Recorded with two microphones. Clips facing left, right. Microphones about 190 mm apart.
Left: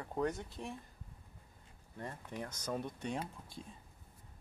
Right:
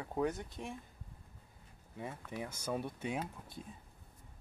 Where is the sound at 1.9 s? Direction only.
10° right (ahead or behind).